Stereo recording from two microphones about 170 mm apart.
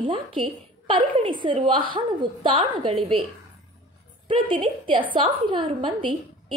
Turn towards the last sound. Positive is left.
turn(degrees=-30)  # may be behind; listen again after turning